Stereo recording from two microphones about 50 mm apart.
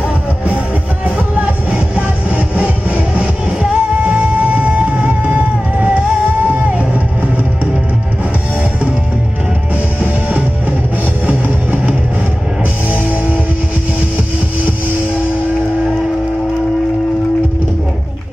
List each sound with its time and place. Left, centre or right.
1.7 s music: right
11.2 s music: right